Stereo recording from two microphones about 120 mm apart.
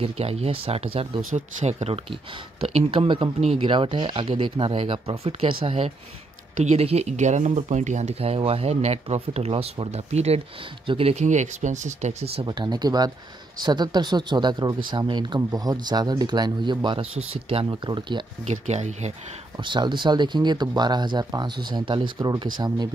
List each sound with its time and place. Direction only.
0.0 s speech: 60° right (ahead or behind)
1.3 s speech: 70° right (ahead or behind)
2.6 s speech: 50° right (ahead or behind)
6.6 s speech: 65° right (ahead or behind)
11.2 s speech: 90° right; by 12.4 s 70° right (ahead or behind)
12.4 s speech: 35° right (ahead or behind)
17.6 s speech: 40° right (ahead or behind)
18.5 s speech: 70° right (ahead or behind)
19.6 s speech: 40° right (ahead or behind)